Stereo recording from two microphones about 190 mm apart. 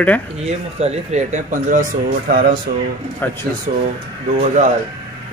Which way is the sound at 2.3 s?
55° right (ahead or behind).